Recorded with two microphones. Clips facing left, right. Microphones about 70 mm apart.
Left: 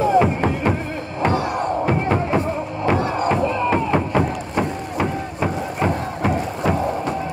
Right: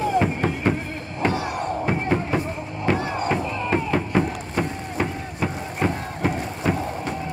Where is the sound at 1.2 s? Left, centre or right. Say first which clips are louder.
Left 4 dB; left.